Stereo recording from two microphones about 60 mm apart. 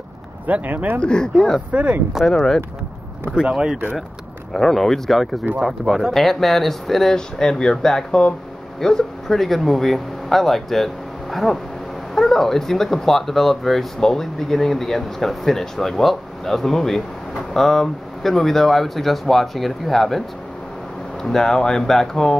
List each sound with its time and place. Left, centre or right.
0.5 s speech: right
1.0 s speech: centre
1.7 s speech: centre
2.2 s speech: centre
3.3 s speech: centre
4.6 s speech: centre